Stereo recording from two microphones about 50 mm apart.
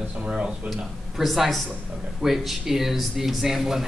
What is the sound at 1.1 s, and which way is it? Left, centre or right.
A man's voice, centre.